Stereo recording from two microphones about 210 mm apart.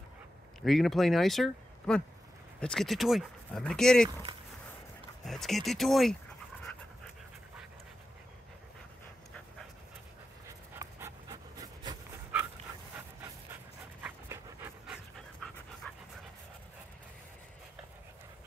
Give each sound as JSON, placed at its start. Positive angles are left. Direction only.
{"t": 0.7, "sound": "speech", "side_deg": 0}
{"t": 5.2, "sound": "speech", "side_deg": 0}
{"t": 10.8, "sound": "pant", "side_deg": -15}
{"t": 14.0, "sound": "dog", "side_deg": -5}
{"t": 15.8, "sound": "dog", "side_deg": 5}